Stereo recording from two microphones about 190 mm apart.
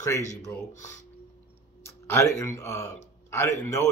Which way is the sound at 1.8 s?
15° left (ahead or behind).